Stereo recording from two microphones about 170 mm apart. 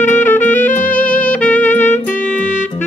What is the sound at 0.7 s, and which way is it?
Music, 50° left (ahead or behind).